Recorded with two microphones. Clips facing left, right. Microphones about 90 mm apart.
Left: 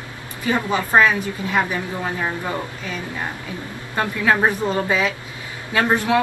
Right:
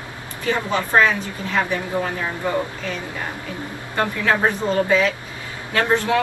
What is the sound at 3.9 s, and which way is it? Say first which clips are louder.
Speech: left 1 dB; 20° left (ahead or behind).